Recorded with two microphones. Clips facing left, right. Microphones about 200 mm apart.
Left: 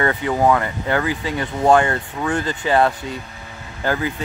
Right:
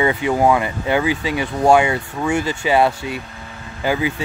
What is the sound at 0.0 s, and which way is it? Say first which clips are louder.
Speech: right 2 dB; 10° right (ahead or behind).